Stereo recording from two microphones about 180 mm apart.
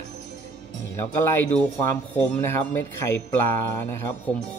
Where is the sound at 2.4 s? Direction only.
15° left (ahead or behind).